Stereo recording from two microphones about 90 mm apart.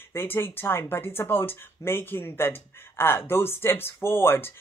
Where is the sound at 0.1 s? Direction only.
25° left (ahead or behind).